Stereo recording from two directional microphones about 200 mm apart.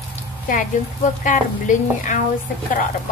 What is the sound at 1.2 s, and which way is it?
Speech, 40° left (ahead or behind).